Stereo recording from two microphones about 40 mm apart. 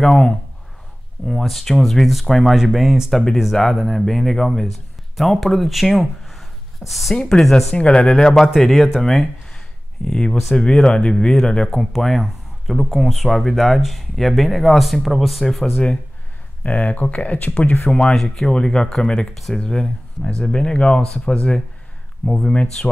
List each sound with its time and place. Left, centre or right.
0.0 s speech: centre
3.5 s speech: centre
5.1 s speech: centre
7.2 s speech: centre
7.7 s speech: left
8.0 s speech: centre
8.5 s speech: centre
11.7 s speech: centre
16.6 s speech: left
18.1 s speech: centre